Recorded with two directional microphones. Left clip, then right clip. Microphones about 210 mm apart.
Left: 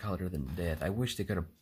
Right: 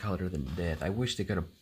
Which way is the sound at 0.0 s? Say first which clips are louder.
Right 2 dB; centre (ahead or behind).